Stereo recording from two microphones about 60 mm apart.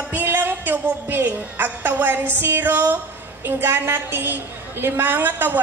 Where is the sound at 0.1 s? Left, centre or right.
Right.